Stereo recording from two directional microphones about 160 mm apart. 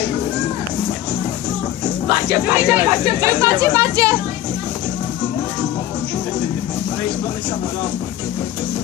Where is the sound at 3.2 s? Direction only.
20° right (ahead or behind).